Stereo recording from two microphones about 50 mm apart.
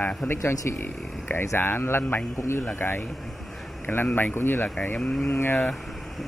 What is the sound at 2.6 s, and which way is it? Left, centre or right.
Speech, left.